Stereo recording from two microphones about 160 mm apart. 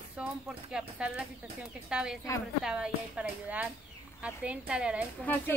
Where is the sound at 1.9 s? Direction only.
5° right (ahead or behind).